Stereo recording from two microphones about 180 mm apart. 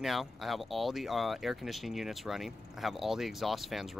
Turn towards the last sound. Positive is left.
turn(degrees=0)  # may be behind; listen again after turning